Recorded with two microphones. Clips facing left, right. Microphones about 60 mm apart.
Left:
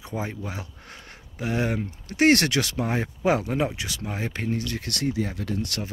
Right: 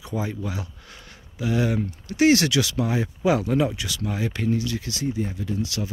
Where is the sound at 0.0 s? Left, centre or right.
Left.